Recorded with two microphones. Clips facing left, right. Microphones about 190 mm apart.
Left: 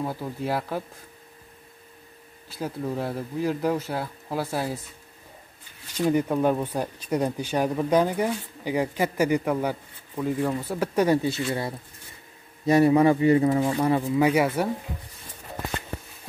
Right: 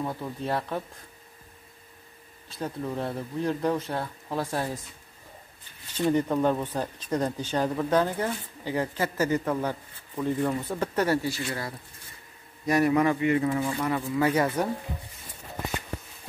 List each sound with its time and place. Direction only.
0.0 s speech: 5° left (ahead or behind)
2.5 s speech: 5° left (ahead or behind)
5.9 s speech: 10° left (ahead or behind); by 14.0 s 30° left (ahead or behind)
14.0 s speech: 15° left (ahead or behind)